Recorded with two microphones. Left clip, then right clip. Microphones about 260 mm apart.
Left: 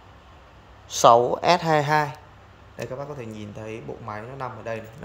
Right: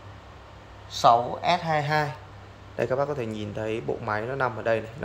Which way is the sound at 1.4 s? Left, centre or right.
Left.